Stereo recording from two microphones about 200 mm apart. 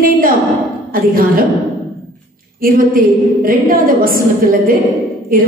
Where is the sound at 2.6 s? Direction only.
45° right (ahead or behind).